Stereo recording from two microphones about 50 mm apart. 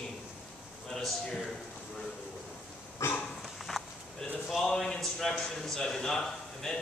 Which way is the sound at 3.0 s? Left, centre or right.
Left.